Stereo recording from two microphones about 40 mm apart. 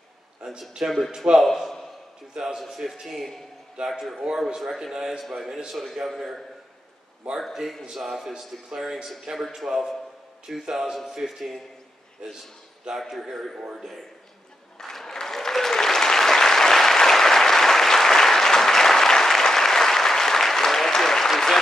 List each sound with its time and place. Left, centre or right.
0.4 s a man's voice: centre
2.3 s a man's voice: centre
5.2 s a man's voice: centre
7.2 s a man's voice: right
8.0 s a man's voice: centre
12.9 s a man's voice: centre
14.8 s applause: centre